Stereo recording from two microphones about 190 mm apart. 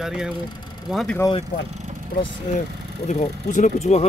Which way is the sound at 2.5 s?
40° left (ahead or behind).